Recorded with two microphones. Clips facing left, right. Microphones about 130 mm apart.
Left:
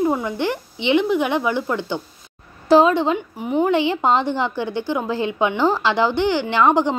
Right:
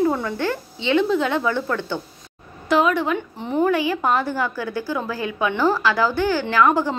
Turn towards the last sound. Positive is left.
turn(degrees=20)  # may be behind; listen again after turning